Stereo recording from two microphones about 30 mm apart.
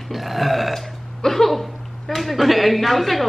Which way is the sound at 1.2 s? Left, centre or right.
Centre.